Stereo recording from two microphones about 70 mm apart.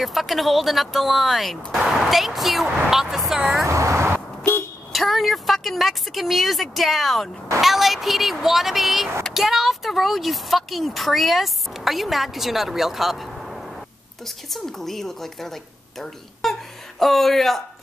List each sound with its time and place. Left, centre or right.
0.0 s speech: centre
3.6 s vehicle: right
4.9 s a woman's voice: centre